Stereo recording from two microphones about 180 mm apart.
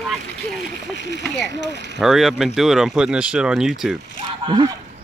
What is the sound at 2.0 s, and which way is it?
Speech, centre (ahead or behind).